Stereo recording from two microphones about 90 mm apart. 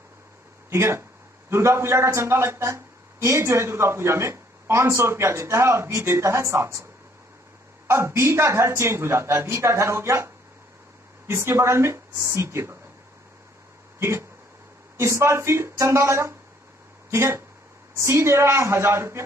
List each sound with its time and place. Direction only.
0.7 s a man's voice: 30° right (ahead or behind)
13.9 s a man's voice: 30° right (ahead or behind)